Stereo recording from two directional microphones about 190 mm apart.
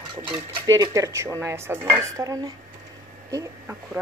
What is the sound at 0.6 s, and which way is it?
Speech, 15° right (ahead or behind).